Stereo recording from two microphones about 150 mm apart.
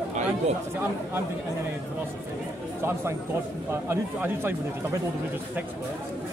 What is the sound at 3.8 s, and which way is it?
Speech, 15° right (ahead or behind).